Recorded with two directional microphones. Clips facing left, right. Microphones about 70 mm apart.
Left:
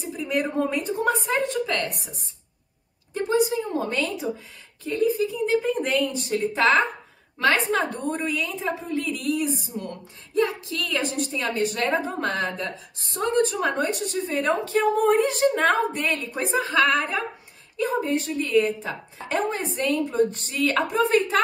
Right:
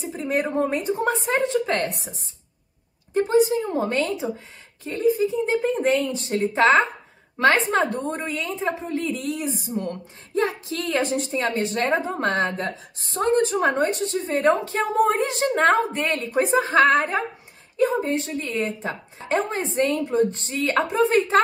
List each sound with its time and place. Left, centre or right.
0.1 s a woman's voice: right
3.1 s a woman's voice: right